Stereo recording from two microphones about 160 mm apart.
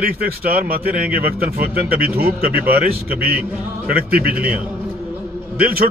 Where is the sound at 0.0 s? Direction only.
70° right (ahead or behind).